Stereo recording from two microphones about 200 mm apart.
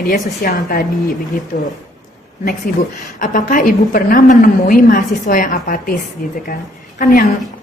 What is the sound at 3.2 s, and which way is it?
A woman's voice, 40° left (ahead or behind).